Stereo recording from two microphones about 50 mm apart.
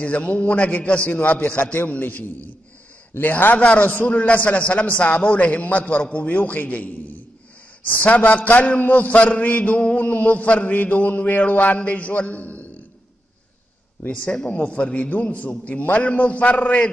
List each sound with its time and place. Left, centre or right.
0.0 s a man's voice: left
1.6 s a man's voice: left
3.6 s a man's voice: left
14.0 s a man's voice: left